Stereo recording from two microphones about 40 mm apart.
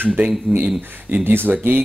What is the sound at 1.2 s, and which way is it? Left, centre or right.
Speech, right.